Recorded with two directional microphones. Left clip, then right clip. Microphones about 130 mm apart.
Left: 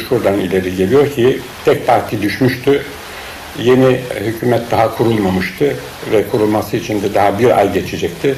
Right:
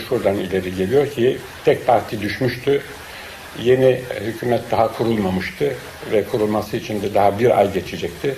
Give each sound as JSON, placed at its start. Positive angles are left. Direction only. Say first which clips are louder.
{"t": 0.2, "sound": "speech", "louder": "left 5 dB", "side_deg": -35}